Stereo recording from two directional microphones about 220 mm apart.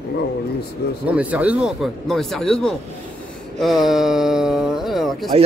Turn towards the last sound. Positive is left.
turn(degrees=0)  # may be behind; listen again after turning